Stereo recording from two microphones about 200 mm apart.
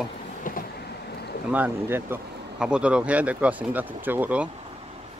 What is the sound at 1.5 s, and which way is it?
Speech, 10° right (ahead or behind).